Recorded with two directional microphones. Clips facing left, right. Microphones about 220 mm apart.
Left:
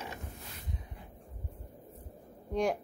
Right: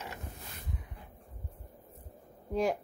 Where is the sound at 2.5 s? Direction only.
Centre (ahead or behind).